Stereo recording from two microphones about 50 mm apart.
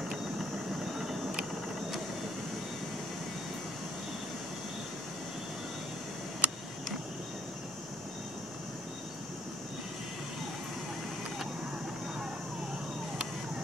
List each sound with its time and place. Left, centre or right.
6.4 s vehicle: right